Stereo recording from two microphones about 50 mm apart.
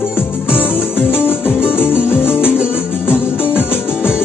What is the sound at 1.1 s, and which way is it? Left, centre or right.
Music, left.